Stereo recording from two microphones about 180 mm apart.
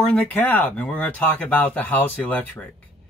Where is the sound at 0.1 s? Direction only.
10° left (ahead or behind).